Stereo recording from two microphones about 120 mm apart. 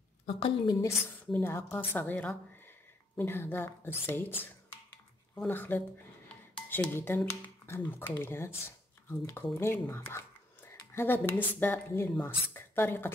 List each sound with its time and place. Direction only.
0.7 s speech: 25° left (ahead or behind)
5.3 s speech: 15° left (ahead or behind)